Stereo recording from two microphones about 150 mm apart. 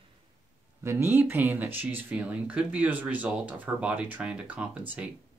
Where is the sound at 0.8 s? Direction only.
15° right (ahead or behind).